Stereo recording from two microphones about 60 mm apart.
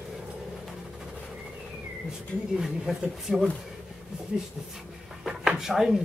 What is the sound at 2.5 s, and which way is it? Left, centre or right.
Speech, centre.